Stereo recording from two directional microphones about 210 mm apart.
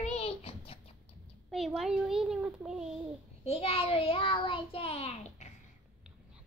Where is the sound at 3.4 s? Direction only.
30° left (ahead or behind).